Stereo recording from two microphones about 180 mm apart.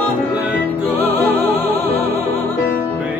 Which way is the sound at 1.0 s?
10° left (ahead or behind).